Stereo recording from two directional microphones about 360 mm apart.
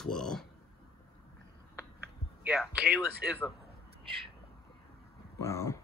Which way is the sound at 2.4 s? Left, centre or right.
Centre.